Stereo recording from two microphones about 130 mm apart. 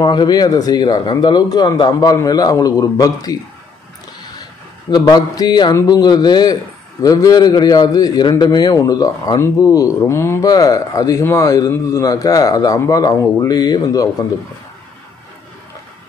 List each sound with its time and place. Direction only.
0.0 s speech: 35° left (ahead or behind)
4.9 s a man's voice: 30° left (ahead or behind)